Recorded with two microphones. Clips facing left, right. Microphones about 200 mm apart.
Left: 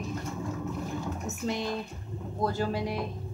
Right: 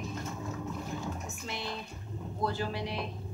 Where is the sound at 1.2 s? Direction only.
45° left (ahead or behind).